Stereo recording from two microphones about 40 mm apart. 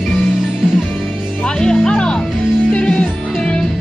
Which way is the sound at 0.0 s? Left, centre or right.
Centre.